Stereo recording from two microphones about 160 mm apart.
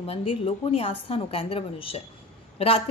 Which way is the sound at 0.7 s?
35° left (ahead or behind).